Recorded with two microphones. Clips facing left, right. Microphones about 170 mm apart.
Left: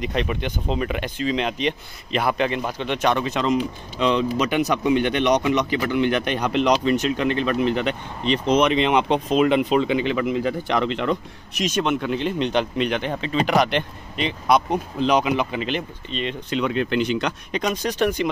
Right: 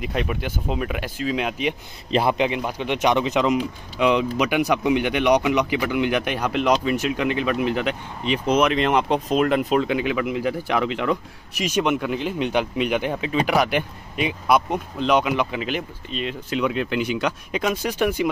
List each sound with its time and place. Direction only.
0.0 s speech: 5° right (ahead or behind)
2.0 s a man's voice: 30° right (ahead or behind)
2.3 s speech: 15° right (ahead or behind)